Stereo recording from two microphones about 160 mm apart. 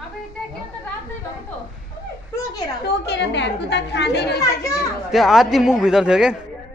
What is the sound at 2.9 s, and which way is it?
A woman's voice, 90° left.